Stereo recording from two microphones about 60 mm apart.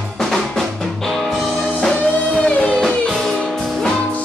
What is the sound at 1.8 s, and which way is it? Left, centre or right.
Music, centre.